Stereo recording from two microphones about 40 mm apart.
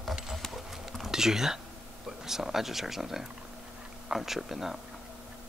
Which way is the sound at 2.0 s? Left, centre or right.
Centre.